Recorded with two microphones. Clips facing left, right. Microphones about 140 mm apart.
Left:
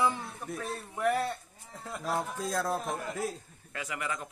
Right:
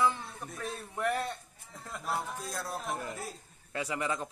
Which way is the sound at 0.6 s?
Centre (ahead or behind).